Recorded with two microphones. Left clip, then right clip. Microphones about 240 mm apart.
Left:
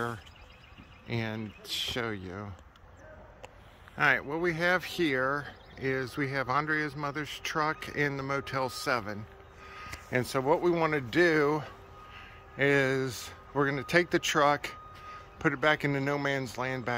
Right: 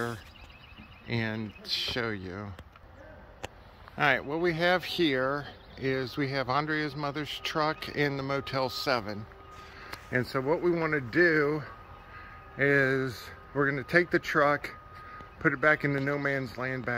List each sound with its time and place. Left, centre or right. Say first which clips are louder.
1.0 s speech: right 2 dB; centre
3.9 s speech: even; centre
10.3 s speech: left 2 dB; centre
12.8 s speech: right 2 dB; centre